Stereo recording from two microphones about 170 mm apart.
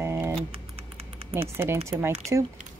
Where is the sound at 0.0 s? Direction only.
15° right (ahead or behind).